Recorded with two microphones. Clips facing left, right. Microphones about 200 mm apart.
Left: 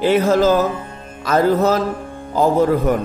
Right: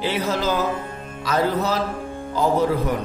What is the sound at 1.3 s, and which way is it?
Music, 50° left (ahead or behind).